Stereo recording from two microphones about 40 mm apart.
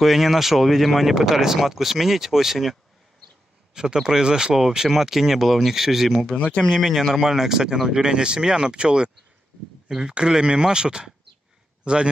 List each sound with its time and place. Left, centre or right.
0.0 s speech: centre
3.7 s speech: centre
4.6 s speech: centre
6.3 s speech: left
6.7 s a man's voice: centre; by 12.1 s right